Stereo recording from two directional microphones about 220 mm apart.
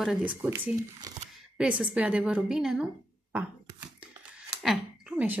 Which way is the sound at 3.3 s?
5° right (ahead or behind).